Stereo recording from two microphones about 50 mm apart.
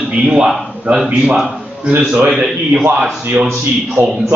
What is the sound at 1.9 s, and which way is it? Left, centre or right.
Speech, centre.